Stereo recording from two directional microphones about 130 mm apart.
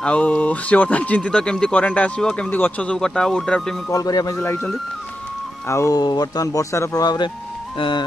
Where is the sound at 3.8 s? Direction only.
25° left (ahead or behind).